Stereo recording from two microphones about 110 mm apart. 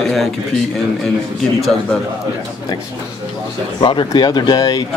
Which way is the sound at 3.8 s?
45° left (ahead or behind).